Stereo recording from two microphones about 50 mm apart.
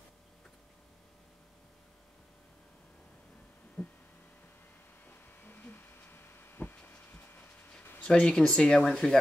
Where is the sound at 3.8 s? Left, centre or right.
Centre.